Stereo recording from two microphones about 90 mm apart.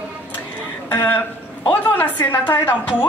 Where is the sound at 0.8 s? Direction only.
25° left (ahead or behind).